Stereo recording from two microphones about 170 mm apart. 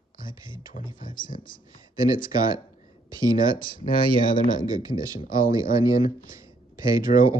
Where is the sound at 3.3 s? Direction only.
55° left (ahead or behind).